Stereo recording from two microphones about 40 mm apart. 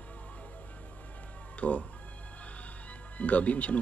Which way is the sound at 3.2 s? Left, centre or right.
Left.